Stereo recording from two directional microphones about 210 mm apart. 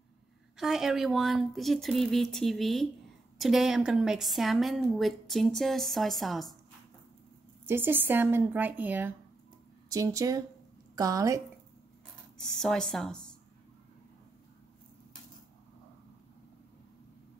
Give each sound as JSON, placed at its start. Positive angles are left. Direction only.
{"t": 0.6, "sound": "speech", "side_deg": 0}
{"t": 7.6, "sound": "speech", "side_deg": -10}
{"t": 12.4, "sound": "speech", "side_deg": 0}